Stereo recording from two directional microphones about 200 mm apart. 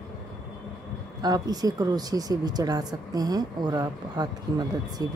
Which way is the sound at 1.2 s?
20° right (ahead or behind).